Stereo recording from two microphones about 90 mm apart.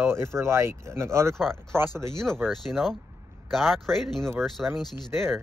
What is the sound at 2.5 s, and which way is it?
Speech, 5° left (ahead or behind).